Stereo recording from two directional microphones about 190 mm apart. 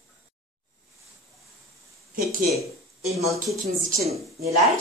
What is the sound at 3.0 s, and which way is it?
Speech, 35° right (ahead or behind).